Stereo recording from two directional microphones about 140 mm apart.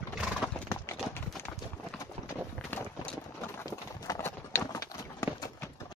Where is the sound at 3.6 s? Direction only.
25° left (ahead or behind).